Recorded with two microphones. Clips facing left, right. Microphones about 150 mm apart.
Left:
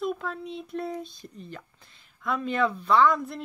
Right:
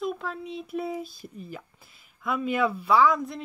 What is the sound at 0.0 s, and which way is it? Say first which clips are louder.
Speech: left 1 dB; centre (ahead or behind).